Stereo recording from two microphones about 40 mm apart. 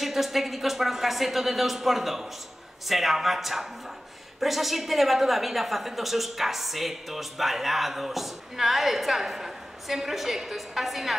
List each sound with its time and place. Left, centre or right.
0.0 s a woman's voice: centre